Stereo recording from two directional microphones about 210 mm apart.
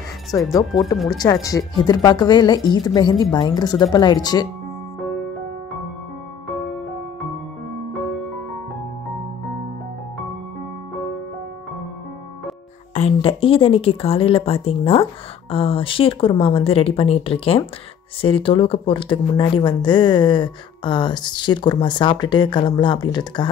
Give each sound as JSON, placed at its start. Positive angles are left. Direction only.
{"t": 0.3, "sound": "speech", "side_deg": 15}
{"t": 12.9, "sound": "speech", "side_deg": 30}